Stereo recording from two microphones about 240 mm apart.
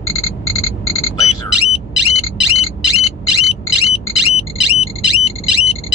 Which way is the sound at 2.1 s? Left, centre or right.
Left.